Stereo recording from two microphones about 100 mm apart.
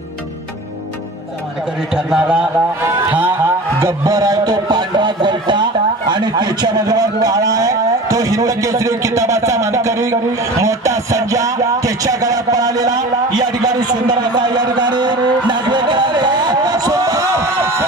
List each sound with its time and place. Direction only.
2.0 s a man's voice: 5° right (ahead or behind)
4.0 s speech: 40° right (ahead or behind)